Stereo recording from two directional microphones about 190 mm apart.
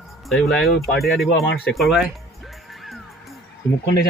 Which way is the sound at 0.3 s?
Centre (ahead or behind).